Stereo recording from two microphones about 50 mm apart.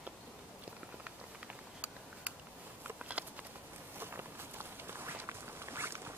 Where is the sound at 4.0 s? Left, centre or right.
Right.